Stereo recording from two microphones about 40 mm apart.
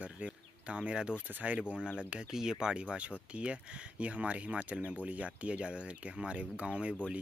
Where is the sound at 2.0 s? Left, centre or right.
Right.